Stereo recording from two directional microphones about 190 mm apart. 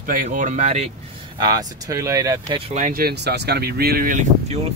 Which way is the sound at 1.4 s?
20° right (ahead or behind).